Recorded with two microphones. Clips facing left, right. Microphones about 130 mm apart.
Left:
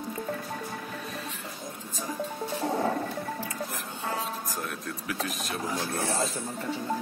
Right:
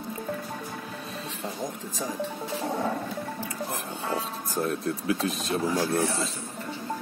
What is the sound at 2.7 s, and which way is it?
Music, 35° left (ahead or behind).